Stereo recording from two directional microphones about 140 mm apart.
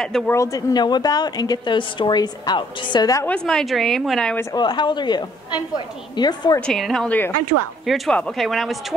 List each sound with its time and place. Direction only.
0.3 s speech: 25° left (ahead or behind)
3.3 s a woman's voice: 5° left (ahead or behind)
4.6 s a woman's voice: 35° left (ahead or behind)
6.6 s a woman's voice: 5° left (ahead or behind)